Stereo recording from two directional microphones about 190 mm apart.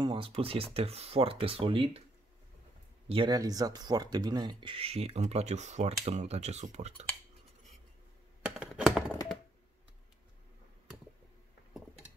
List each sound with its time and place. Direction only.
0.0 s speech: 25° right (ahead or behind)
3.1 s speech: 25° right (ahead or behind)
8.4 s computer keyboard: 5° right (ahead or behind)